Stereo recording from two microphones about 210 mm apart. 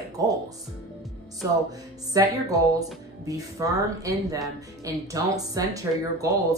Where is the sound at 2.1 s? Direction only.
15° right (ahead or behind).